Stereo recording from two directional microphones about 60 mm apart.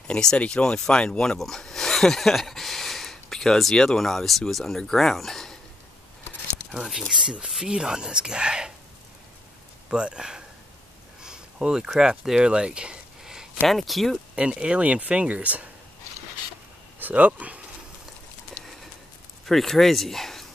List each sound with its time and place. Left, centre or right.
0.1 s speech: centre
6.7 s speech: centre
9.8 s speech: centre
11.2 s a sound: centre
11.9 s speech: centre
14.3 s speech: centre
17.0 s speech: right
19.4 s speech: centre